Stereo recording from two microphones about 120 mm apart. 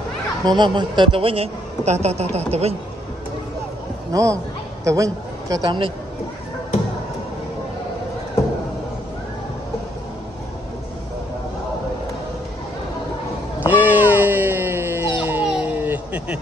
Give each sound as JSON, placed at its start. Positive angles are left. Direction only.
{"t": 0.5, "sound": "speech", "side_deg": -40}
{"t": 4.1, "sound": "a man's voice", "side_deg": -30}
{"t": 13.6, "sound": "dog", "side_deg": -15}
{"t": 15.5, "sound": "a sound", "side_deg": -15}